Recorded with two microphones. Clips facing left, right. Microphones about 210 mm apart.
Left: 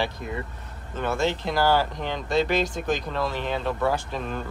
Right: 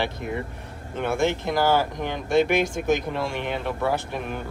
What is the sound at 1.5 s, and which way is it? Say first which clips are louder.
Speech: right 1 dB; 15° right (ahead or behind).